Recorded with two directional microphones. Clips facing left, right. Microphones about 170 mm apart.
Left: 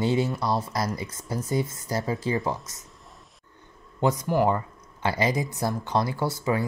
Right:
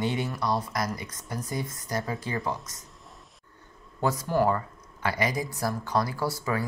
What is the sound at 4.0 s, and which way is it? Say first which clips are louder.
Speech: left 2 dB; 20° left (ahead or behind).